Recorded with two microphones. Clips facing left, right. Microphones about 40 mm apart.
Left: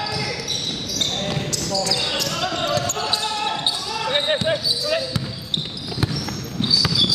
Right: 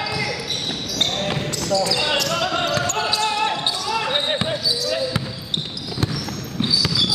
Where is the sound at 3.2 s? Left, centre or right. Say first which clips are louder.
Right 3 dB; centre.